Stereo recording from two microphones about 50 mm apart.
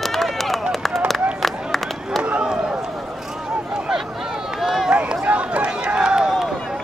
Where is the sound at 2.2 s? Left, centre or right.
Right.